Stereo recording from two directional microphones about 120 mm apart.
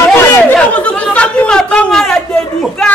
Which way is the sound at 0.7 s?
10° left (ahead or behind).